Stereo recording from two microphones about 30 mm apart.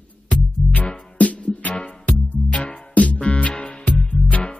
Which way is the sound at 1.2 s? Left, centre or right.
Left.